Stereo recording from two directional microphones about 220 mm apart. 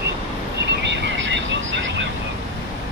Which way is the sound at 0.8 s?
55° right (ahead or behind).